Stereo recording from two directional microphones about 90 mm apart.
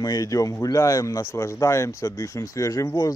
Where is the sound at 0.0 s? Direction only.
45° left (ahead or behind).